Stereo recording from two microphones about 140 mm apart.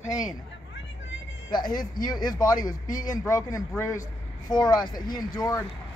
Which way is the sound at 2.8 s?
70° left (ahead or behind).